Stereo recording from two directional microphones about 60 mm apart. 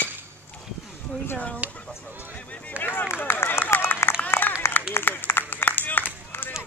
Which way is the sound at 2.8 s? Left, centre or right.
Left.